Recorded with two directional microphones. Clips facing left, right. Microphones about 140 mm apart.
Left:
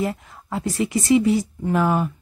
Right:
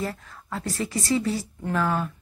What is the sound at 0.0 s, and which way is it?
Speech, 20° left (ahead or behind).